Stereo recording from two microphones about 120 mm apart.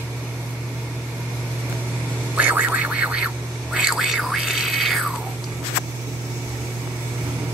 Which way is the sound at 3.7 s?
5° right (ahead or behind).